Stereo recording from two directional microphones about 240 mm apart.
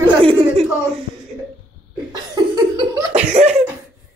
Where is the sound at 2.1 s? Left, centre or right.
Centre.